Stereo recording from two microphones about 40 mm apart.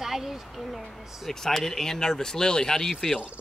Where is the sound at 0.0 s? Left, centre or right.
Centre.